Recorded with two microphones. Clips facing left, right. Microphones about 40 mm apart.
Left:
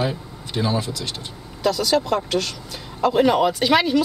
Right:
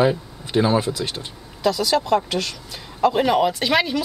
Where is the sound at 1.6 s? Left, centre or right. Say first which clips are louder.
Even; centre.